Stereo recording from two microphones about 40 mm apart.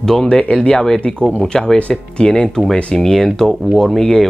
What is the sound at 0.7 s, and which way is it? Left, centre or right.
Speech, centre.